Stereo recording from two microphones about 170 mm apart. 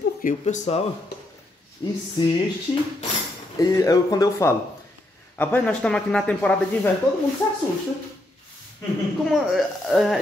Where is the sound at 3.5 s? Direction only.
20° left (ahead or behind).